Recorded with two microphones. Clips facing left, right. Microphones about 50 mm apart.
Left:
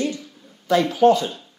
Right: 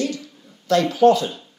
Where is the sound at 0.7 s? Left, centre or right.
Centre.